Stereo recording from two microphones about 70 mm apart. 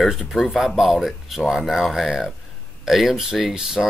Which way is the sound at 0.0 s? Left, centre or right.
Centre.